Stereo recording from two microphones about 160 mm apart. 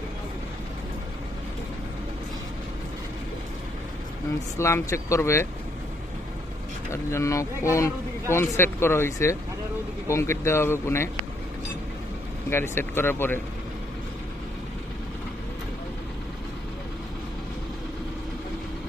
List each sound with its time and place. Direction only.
4.6 s speech: 15° left (ahead or behind)
6.9 s speech: 20° left (ahead or behind)
12.4 s speech: 15° left (ahead or behind)